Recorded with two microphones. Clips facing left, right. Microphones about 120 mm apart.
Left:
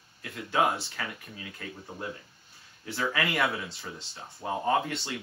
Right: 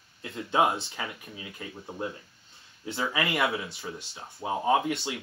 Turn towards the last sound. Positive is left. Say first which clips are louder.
# right 2 dB
turn(degrees=-10)  # may be behind; listen again after turning